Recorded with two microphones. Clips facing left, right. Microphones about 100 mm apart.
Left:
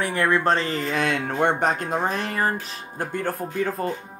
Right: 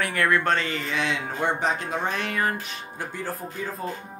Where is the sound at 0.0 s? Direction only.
30° left (ahead or behind).